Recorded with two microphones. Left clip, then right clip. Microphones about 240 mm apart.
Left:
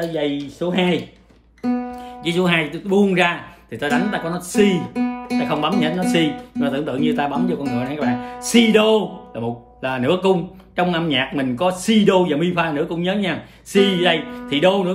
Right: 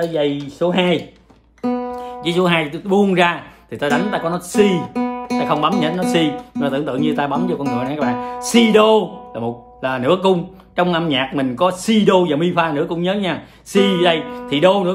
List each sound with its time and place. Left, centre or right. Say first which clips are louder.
0.6 s speech: right 4 dB; centre